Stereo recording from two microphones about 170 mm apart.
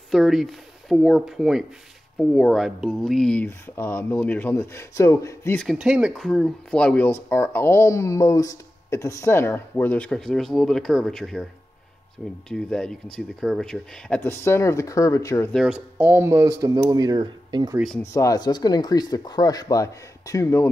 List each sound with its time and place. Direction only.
0.1 s speech: centre (ahead or behind); by 5.6 s 15° left (ahead or behind)
5.6 s speech: 5° right (ahead or behind)
12.4 s speech: 5° left (ahead or behind)
15.5 s speech: 5° right (ahead or behind); by 17.7 s 25° right (ahead or behind)
17.7 s speech: centre (ahead or behind)
18.0 s speech: 20° left (ahead or behind)